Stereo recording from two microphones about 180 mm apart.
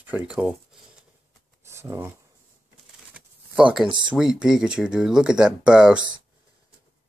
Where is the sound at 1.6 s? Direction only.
15° right (ahead or behind).